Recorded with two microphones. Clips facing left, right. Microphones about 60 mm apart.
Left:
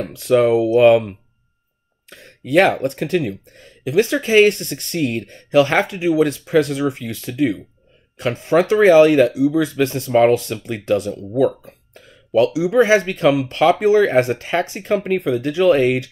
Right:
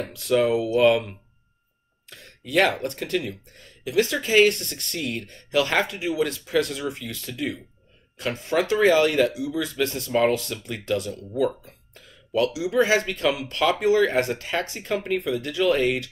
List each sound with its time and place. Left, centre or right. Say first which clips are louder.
0.1 s speech: left 7 dB; left
2.0 s speech: left 10 dB; left